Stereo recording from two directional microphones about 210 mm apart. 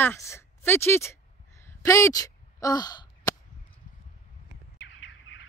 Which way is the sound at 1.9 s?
15° left (ahead or behind).